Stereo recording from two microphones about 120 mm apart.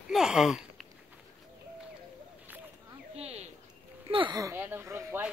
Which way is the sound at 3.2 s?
60° right (ahead or behind).